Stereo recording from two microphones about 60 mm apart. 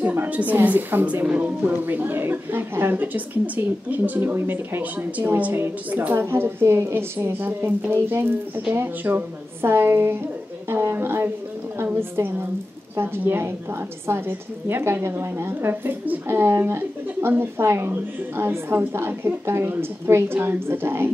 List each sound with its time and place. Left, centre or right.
0.0 s a woman's voice: right
1.2 s a woman's voice: right
1.6 s a woman's voice: right
6.1 s a woman's voice: right
10.7 s a sound: right
11.8 s a woman's voice: right